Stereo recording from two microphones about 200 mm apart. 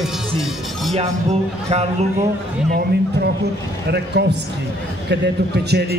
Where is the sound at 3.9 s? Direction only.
55° right (ahead or behind).